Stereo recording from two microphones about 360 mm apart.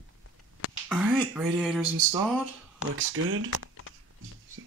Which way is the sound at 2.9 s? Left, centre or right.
Right.